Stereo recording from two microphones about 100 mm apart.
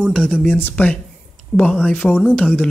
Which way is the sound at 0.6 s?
15° left (ahead or behind).